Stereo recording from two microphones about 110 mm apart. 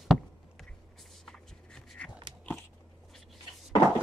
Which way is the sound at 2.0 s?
10° left (ahead or behind).